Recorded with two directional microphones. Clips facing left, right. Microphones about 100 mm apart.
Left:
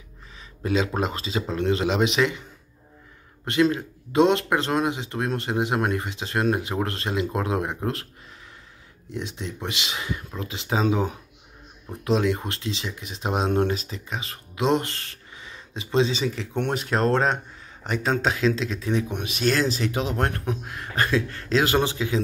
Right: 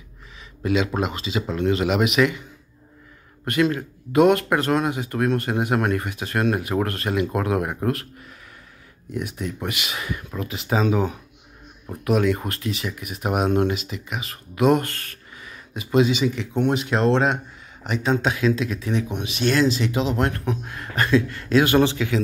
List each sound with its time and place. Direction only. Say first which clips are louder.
0.7 s speech: right 2 dB; 35° left (ahead or behind)
3.4 s speech: even; 25° left (ahead or behind)
9.1 s speech: right 4 dB; 25° left (ahead or behind)
20.7 s a sound: left 2 dB; 30° left (ahead or behind)
21.3 s speech: right 4 dB; 35° left (ahead or behind)